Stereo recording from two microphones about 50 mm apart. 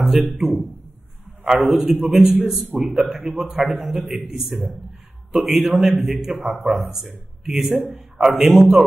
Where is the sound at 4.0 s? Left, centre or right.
Centre.